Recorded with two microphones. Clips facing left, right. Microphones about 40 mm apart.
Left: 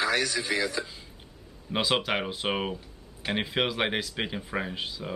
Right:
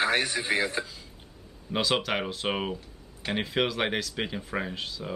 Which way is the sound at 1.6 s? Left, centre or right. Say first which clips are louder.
Even; centre.